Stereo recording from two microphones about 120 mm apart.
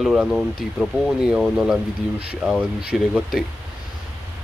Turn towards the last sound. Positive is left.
turn(degrees=-5)  # may be behind; listen again after turning